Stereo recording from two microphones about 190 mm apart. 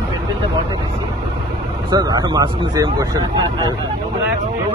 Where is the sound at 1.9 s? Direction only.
20° right (ahead or behind).